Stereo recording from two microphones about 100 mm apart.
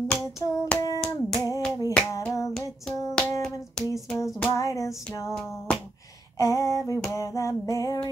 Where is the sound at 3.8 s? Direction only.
5° left (ahead or behind).